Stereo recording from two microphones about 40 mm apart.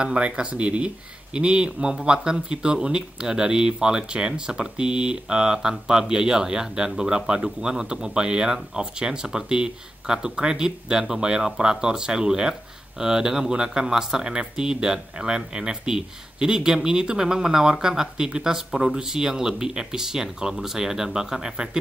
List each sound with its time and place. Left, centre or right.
0.0 s speech: right